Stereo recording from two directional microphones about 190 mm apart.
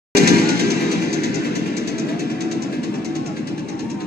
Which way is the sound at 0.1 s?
55° right (ahead or behind).